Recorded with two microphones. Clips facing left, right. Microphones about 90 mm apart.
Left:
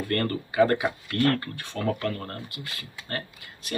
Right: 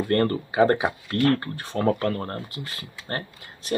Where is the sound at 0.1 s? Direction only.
25° right (ahead or behind).